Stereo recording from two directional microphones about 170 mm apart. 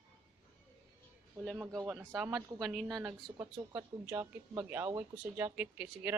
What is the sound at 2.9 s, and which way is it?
Speech, 20° right (ahead or behind).